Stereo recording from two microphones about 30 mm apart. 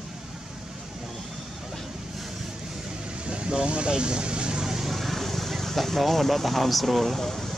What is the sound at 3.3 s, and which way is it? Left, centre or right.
Vehicle, right.